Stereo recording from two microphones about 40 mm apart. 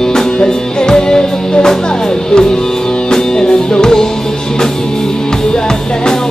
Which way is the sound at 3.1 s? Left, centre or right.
Centre.